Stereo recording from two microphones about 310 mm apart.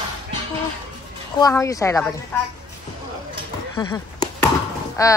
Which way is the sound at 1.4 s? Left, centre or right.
Centre.